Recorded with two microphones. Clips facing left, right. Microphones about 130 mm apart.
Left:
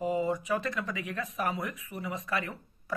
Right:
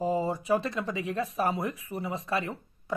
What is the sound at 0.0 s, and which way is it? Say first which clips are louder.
Speech: right 1 dB; 35° right (ahead or behind).